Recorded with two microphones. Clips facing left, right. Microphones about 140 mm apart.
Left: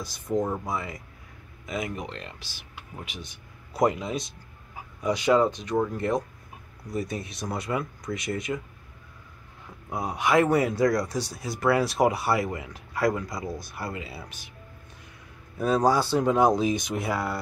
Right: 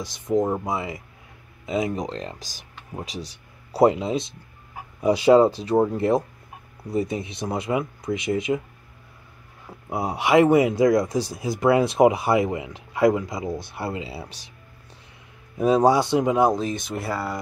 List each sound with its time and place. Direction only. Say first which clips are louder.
0.0 s speech: right 5 dB; 20° right (ahead or behind)
9.7 s speech: right 4 dB; 30° right (ahead or behind)
15.5 s speech: right 5 dB; 20° right (ahead or behind)
16.5 s speech: left 1 dB; centre (ahead or behind)